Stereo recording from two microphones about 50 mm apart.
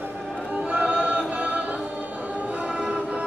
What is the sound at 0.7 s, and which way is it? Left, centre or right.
Choir, right.